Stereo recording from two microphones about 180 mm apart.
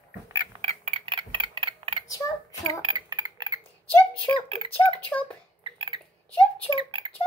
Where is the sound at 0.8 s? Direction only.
30° right (ahead or behind).